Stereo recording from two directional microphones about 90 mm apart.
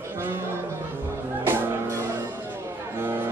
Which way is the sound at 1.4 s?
30° right (ahead or behind).